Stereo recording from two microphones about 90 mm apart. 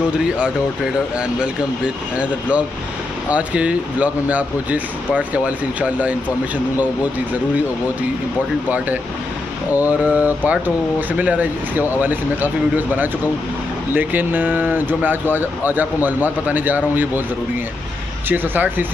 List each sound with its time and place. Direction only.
3.3 s speech: 15° right (ahead or behind)
8.6 s speech: 20° right (ahead or behind)
18.3 s speech: 20° right (ahead or behind)